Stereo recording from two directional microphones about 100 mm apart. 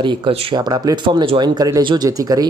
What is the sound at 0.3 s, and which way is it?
Speech, 80° right.